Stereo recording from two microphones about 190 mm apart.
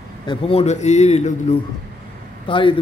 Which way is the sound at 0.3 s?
30° left (ahead or behind).